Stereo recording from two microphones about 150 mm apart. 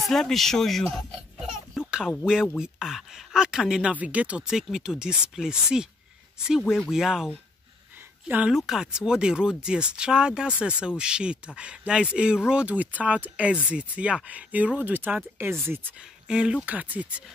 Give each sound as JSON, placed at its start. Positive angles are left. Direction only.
{"t": 0.0, "sound": "speech", "side_deg": 0}
{"t": 0.9, "sound": "a sound", "side_deg": 0}
{"t": 1.9, "sound": "music", "side_deg": -5}
{"t": 2.5, "sound": "speech", "side_deg": -5}
{"t": 8.3, "sound": "speech", "side_deg": -5}